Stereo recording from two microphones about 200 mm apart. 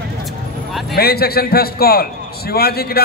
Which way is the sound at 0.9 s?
50° left (ahead or behind).